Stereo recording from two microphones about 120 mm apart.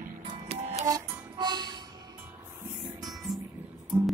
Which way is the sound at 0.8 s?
35° right (ahead or behind).